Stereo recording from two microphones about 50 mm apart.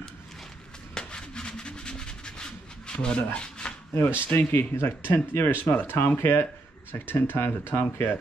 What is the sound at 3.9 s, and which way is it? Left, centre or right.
Speech, left.